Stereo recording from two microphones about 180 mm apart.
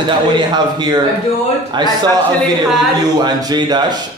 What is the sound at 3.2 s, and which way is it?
Speech, 20° right (ahead or behind).